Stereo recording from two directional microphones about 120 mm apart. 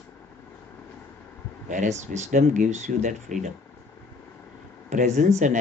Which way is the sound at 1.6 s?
90° right.